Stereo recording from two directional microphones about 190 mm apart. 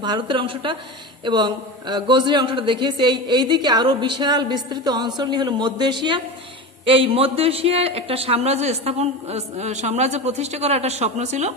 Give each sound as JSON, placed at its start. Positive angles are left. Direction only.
{"t": 0.0, "sound": "speech", "side_deg": -25}